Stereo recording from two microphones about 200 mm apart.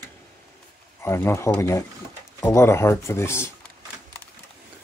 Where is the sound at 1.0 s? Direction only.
10° left (ahead or behind).